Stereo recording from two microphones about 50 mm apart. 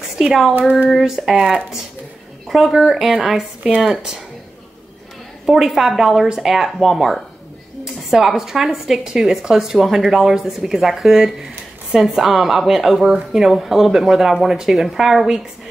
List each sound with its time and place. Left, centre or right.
0.2 s speech: centre
0.6 s a sound: right
0.8 s a woman's voice: centre
2.4 s speech: centre
2.8 s a woman's voice: centre
5.5 s a woman's voice: centre